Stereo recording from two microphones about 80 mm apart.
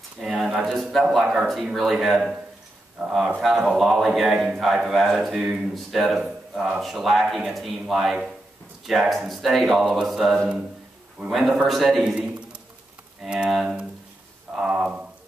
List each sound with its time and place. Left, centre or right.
0.2 s a man's voice: centre
5.4 s speech: centre
5.8 s a man's voice: centre
13.2 s speech: centre
14.5 s a sound: centre